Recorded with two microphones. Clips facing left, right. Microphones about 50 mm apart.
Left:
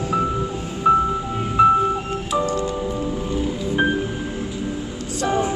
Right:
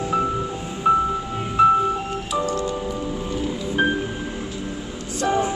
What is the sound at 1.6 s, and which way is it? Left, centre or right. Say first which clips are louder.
Music: left 1 dB; centre.